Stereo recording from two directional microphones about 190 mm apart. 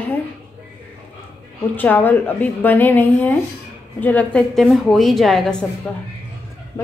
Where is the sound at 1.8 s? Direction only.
10° left (ahead or behind).